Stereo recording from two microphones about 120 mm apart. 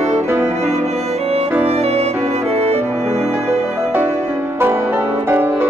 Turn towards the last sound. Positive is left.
turn(degrees=-15)  # may be behind; listen again after turning